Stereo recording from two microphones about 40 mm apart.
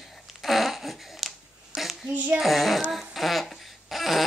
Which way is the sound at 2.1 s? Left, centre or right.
Right.